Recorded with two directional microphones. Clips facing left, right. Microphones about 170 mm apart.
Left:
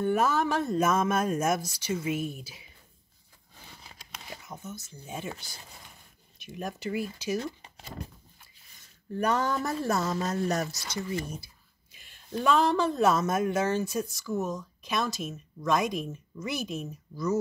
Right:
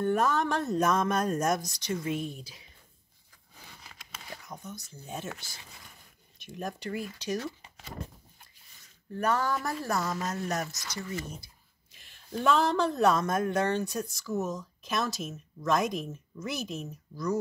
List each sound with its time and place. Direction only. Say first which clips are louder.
0.0 s speech: left 1 dB; 5° left (ahead or behind)
4.5 s speech: left 2 dB; 5° left (ahead or behind)
6.3 s speech: even; centre (ahead or behind)
9.1 s speech: left 1 dB; 15° left (ahead or behind); by 11.0 s 30° left (ahead or behind)
11.4 s speech: left 1 dB; 5° left (ahead or behind)